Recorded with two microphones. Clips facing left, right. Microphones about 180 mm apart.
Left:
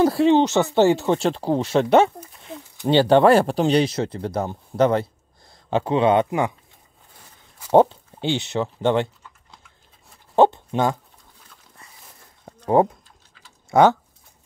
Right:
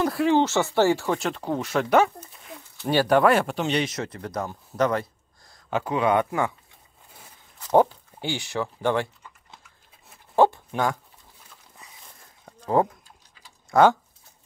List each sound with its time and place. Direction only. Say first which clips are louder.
0.0 s speech: left 5 dB; 25° left (ahead or behind)
7.7 s speech: left 4 dB; 25° left (ahead or behind)
10.3 s speech: left 3 dB; 20° left (ahead or behind)
13.7 s speech: left 2 dB; 25° left (ahead or behind)